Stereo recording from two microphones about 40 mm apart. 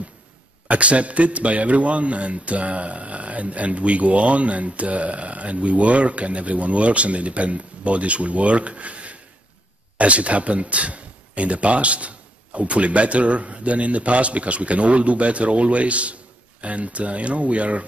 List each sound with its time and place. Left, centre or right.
0.7 s a man's voice: right